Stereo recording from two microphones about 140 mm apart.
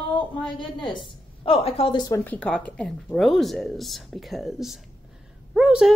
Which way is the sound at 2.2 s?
10° left (ahead or behind).